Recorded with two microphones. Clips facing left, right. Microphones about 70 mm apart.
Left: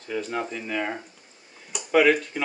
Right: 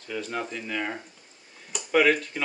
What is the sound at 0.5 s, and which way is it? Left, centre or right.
Speech, centre.